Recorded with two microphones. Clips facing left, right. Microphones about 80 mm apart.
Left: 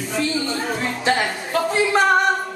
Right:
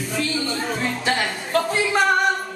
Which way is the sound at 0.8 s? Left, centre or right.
Centre.